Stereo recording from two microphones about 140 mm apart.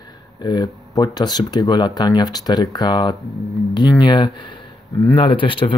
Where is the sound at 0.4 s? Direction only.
30° left (ahead or behind).